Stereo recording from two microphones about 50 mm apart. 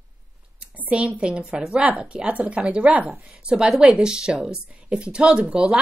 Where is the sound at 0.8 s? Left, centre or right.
Right.